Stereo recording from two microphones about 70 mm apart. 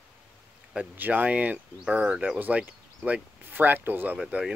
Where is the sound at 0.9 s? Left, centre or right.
Right.